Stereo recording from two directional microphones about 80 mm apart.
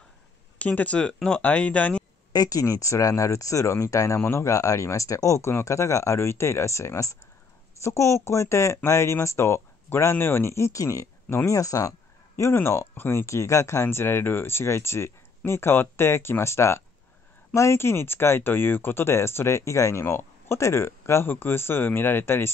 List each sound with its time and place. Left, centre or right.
0.6 s speech: centre
2.3 s speech: left
2.6 s speech: left
12.4 s speech: left